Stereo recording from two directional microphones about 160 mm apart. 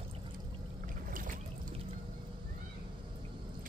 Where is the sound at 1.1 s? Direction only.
60° right (ahead or behind).